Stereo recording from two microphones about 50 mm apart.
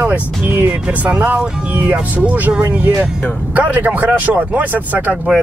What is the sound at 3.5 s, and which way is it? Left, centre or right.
Speech, right.